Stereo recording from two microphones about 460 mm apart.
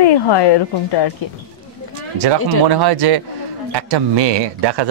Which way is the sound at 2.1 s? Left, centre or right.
Right.